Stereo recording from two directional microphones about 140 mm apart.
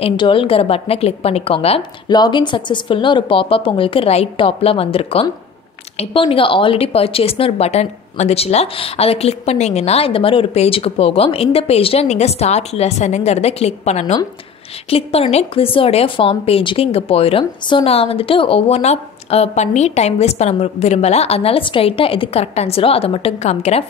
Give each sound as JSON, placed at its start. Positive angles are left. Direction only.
{"t": 0.0, "sound": "speech", "side_deg": 40}
{"t": 1.8, "sound": "a woman's voice", "side_deg": 30}